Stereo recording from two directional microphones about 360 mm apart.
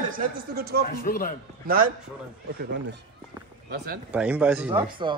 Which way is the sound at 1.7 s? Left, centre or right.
Right.